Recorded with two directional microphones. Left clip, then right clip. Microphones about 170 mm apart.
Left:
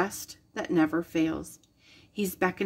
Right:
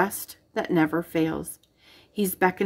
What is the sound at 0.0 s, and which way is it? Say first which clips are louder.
A woman's voice: right 5 dB; 20° right (ahead or behind).